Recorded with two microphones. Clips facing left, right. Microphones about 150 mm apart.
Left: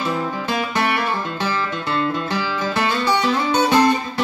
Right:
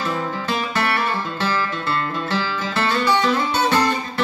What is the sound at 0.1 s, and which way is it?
Music, 15° left (ahead or behind).